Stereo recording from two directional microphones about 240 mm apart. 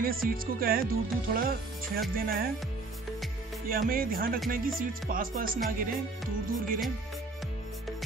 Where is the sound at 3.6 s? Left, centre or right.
Right.